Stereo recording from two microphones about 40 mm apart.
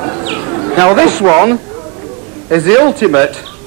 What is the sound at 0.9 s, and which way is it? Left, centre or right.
A man's voice, centre.